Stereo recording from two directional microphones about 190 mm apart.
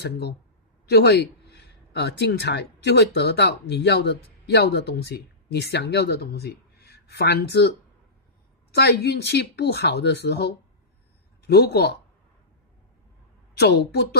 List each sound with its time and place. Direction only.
0.0 s speech: 60° left (ahead or behind)
8.7 s speech: 60° left (ahead or behind)
13.6 s speech: 60° left (ahead or behind)